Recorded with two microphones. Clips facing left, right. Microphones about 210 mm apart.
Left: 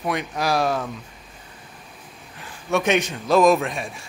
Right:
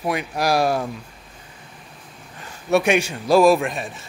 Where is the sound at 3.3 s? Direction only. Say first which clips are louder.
Right 2 dB; 35° right (ahead or behind).